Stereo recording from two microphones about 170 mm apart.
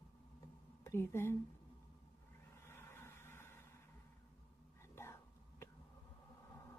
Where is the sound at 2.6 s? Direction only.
15° left (ahead or behind).